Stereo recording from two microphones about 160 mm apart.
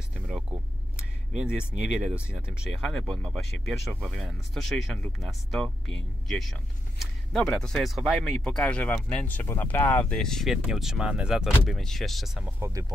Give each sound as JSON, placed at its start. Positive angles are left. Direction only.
{"t": 0.1, "sound": "a sound", "side_deg": -5}
{"t": 1.7, "sound": "speech", "side_deg": -5}
{"t": 12.5, "sound": "speech", "side_deg": -15}